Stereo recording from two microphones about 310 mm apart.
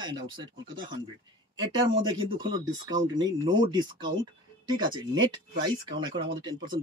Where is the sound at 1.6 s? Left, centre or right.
Centre.